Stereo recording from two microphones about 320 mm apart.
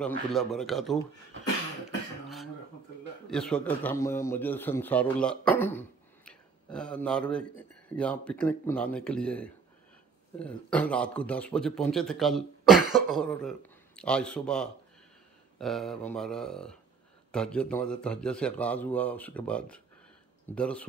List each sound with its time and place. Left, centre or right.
0.0 s a man's voice: centre
2.2 s cough: centre
3.3 s a man's voice: centre